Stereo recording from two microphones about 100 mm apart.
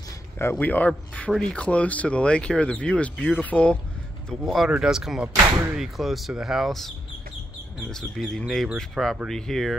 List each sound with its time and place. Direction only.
0.4 s speech: 20° left (ahead or behind)
4.3 s speech: centre (ahead or behind)
7.9 s speech: 5° left (ahead or behind)